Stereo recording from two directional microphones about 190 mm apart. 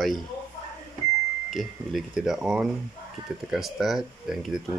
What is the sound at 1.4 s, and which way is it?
Speech, centre (ahead or behind).